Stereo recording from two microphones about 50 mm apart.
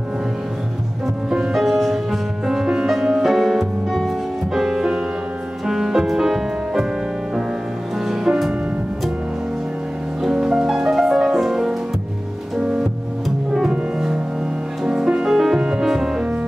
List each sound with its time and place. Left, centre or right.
1.5 s music: centre
8.0 s music: centre
10.2 s music: centre